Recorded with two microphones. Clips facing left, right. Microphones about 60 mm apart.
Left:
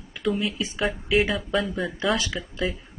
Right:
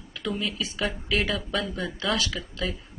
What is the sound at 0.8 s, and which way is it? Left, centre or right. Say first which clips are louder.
Speech: left 5 dB; centre.